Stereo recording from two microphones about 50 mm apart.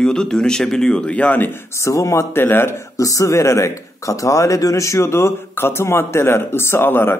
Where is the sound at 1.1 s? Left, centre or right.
Left.